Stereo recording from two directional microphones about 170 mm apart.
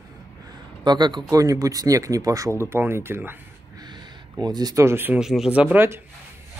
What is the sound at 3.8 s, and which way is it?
Speech, 25° right (ahead or behind).